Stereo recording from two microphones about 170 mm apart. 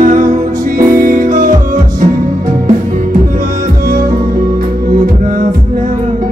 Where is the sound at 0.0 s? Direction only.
50° right (ahead or behind).